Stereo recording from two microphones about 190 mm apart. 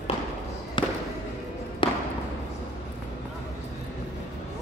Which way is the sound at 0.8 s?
25° left (ahead or behind).